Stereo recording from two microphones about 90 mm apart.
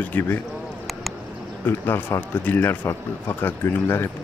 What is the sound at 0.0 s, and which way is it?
Speech, 20° left (ahead or behind).